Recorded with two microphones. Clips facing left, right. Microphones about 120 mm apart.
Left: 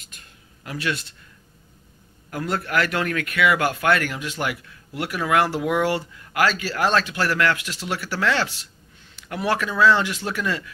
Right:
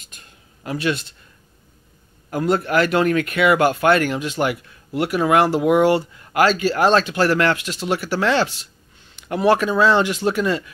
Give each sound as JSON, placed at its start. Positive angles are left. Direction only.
{"t": 0.7, "sound": "speech", "side_deg": -25}
{"t": 2.3, "sound": "speech", "side_deg": -20}